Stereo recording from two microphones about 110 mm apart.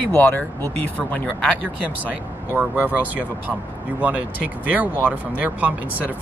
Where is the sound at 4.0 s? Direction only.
15° right (ahead or behind).